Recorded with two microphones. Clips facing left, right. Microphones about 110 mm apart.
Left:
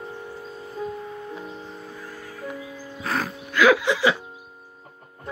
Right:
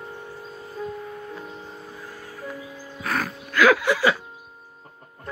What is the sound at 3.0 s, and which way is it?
Music, 30° left (ahead or behind).